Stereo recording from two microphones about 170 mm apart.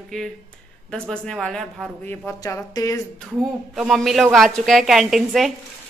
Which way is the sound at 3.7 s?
Centre (ahead or behind).